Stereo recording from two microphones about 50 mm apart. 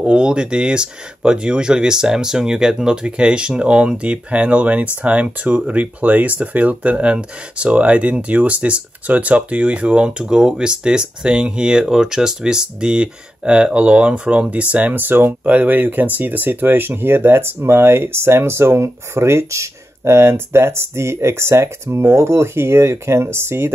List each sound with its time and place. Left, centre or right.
0.0 s speech: centre; by 23.7 s right